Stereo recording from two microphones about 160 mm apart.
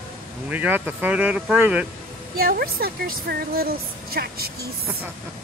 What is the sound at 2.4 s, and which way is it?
A woman's voice, 70° right (ahead or behind).